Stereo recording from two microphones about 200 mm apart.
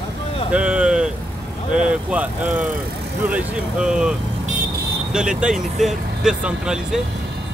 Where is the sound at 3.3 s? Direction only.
5° right (ahead or behind).